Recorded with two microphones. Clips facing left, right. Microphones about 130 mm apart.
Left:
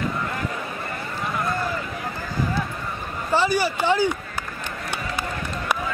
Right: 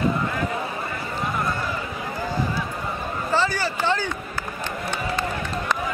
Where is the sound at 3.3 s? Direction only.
15° left (ahead or behind).